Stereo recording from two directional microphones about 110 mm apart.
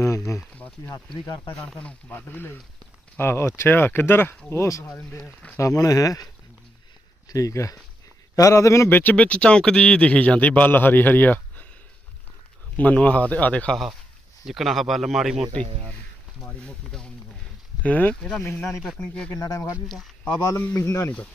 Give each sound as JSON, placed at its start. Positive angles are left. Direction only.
{"t": 0.0, "sound": "a sound", "side_deg": 25}
{"t": 1.2, "sound": "speech", "side_deg": 30}
{"t": 1.6, "sound": "a man's voice", "side_deg": 5}
{"t": 4.8, "sound": "a man's voice", "side_deg": 15}
{"t": 5.6, "sound": "speech", "side_deg": 30}
{"t": 7.2, "sound": "a man's voice", "side_deg": 30}
{"t": 12.7, "sound": "a man's voice", "side_deg": 10}
{"t": 14.4, "sound": "speech", "side_deg": 0}
{"t": 16.4, "sound": "a man's voice", "side_deg": 10}
{"t": 18.8, "sound": "a man's voice", "side_deg": 5}
{"t": 19.3, "sound": "speech", "side_deg": 35}